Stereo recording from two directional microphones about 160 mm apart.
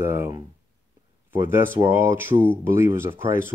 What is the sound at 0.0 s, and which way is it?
Speech, 15° right (ahead or behind).